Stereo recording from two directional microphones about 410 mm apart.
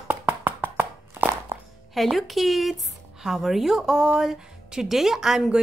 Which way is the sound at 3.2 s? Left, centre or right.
Centre.